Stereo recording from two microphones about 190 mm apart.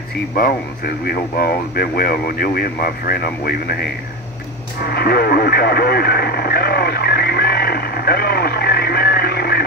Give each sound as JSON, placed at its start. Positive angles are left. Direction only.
{"t": 0.4, "sound": "speech", "side_deg": 50}
{"t": 4.8, "sound": "radio", "side_deg": 55}